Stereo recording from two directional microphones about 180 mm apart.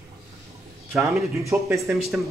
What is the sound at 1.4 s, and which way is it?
Speech, 15° right (ahead or behind).